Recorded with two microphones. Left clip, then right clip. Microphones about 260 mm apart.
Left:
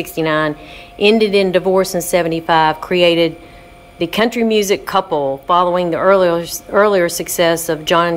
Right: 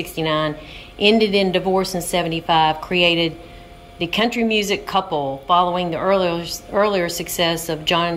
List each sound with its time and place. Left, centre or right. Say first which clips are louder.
0.0 s a woman's voice: left 5 dB; centre